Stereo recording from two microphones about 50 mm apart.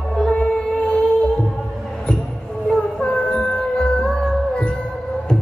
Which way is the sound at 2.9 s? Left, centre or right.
Centre.